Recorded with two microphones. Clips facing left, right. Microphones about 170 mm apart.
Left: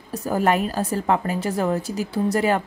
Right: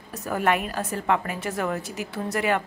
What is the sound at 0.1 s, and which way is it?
A woman's voice, 35° left (ahead or behind).